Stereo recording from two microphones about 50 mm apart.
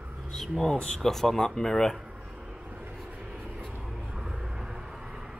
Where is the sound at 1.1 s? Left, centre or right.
Centre.